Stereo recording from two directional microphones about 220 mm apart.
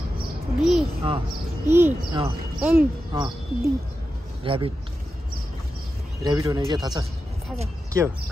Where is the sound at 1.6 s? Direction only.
10° right (ahead or behind).